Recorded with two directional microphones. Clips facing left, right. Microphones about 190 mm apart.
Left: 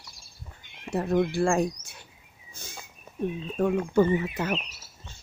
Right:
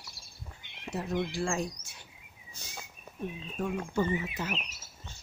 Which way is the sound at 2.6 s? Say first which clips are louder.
Left 5 dB; 50° left (ahead or behind).